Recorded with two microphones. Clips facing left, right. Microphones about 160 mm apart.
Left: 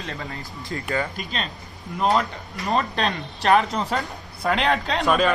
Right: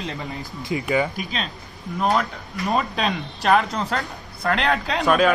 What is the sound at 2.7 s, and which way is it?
Speech, 5° right (ahead or behind).